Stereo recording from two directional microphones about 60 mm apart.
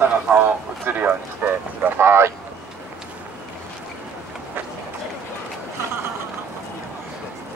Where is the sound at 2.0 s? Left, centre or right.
Right.